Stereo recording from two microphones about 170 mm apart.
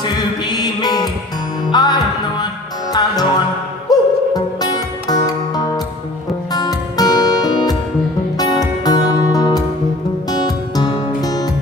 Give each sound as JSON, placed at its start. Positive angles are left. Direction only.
{"t": 0.0, "sound": "music", "side_deg": 25}